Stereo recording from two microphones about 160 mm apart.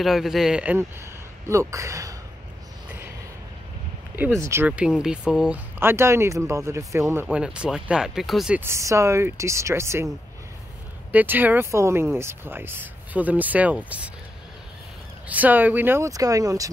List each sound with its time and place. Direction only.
0.0 s speech: centre (ahead or behind)
1.5 s speech: 20° right (ahead or behind)
4.2 s speech: 15° right (ahead or behind)
8.5 s speech: 15° right (ahead or behind)
11.1 s speech: 10° right (ahead or behind)
15.2 s speech: 10° right (ahead or behind)